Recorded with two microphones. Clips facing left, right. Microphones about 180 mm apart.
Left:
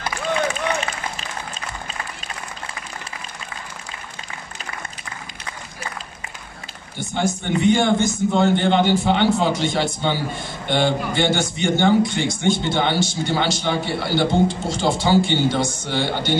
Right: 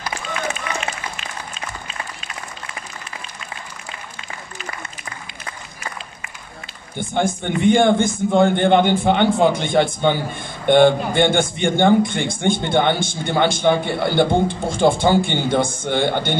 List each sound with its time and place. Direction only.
7.0 s a man's voice: 55° right (ahead or behind)